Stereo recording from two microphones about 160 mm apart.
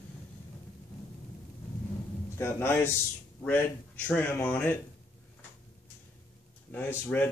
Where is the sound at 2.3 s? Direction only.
15° left (ahead or behind).